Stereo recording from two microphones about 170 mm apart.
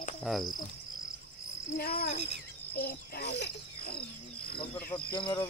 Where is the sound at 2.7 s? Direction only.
65° left (ahead or behind).